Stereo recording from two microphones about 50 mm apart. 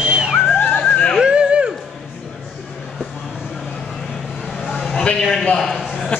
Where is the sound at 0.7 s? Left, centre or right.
Left.